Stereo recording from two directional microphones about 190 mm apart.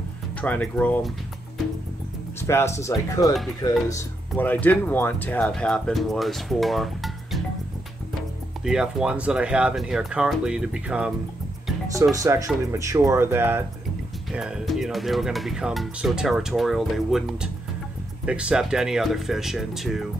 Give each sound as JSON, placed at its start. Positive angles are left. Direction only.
{"t": 0.4, "sound": "speech", "side_deg": 5}
{"t": 2.4, "sound": "speech", "side_deg": 15}
{"t": 8.6, "sound": "speech", "side_deg": -5}
{"t": 11.9, "sound": "speech", "side_deg": -15}